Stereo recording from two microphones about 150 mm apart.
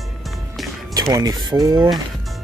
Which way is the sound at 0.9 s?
25° right (ahead or behind).